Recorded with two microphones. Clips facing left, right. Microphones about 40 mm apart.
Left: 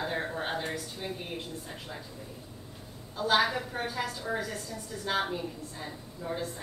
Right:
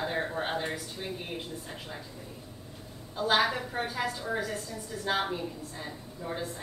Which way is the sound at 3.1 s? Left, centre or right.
Centre.